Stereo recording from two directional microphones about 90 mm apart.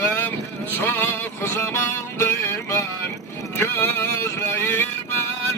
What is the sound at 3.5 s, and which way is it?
Music, 20° left (ahead or behind).